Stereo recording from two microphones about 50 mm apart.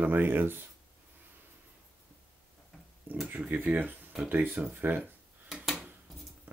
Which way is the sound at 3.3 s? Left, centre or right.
Right.